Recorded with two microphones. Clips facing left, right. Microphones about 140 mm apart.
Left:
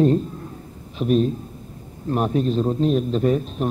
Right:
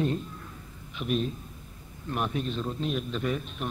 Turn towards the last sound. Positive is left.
turn(degrees=35)  # may be behind; listen again after turning